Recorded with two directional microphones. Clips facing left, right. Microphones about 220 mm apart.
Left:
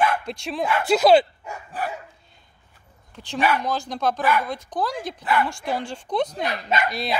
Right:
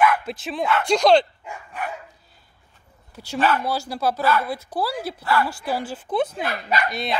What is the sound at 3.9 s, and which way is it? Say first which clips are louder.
Speech: even; 5° right (ahead or behind).